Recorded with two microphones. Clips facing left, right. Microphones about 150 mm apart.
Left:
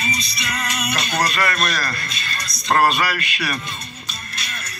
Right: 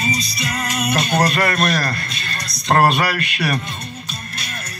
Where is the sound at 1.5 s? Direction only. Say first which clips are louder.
Right 5 dB; 55° right (ahead or behind).